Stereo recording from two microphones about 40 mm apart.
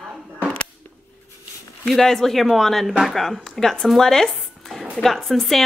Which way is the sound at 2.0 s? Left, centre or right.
Centre.